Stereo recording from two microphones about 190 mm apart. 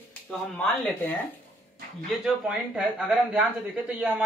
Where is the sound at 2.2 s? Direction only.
Centre (ahead or behind).